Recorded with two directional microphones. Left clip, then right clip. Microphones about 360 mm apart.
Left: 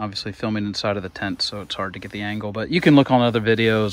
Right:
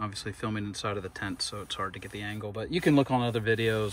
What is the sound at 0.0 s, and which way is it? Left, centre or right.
Speech, centre.